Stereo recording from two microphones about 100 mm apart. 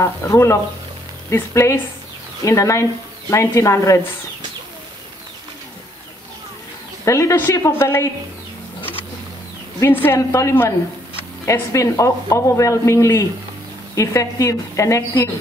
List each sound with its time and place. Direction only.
0.0 s speech: 30° left (ahead or behind)
7.1 s speech: 30° left (ahead or behind)
9.8 s a woman's voice: 20° left (ahead or behind)